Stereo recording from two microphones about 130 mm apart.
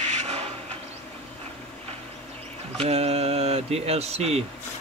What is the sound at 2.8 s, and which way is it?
Speech, 50° right (ahead or behind).